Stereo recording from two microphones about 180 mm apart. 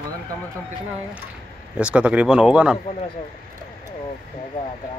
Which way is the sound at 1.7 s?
5° right (ahead or behind).